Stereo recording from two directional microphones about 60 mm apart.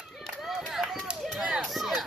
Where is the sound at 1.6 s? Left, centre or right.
Centre.